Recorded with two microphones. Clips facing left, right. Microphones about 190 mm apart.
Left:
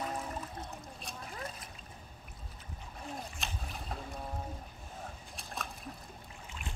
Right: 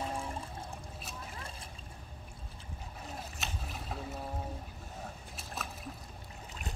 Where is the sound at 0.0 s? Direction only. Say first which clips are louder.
Even; 30° right (ahead or behind).